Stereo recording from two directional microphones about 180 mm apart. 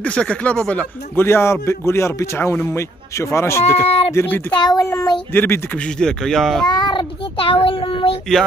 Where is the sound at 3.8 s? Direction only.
35° left (ahead or behind).